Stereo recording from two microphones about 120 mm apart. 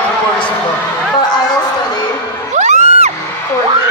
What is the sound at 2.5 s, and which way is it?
Crowd, 75° right (ahead or behind).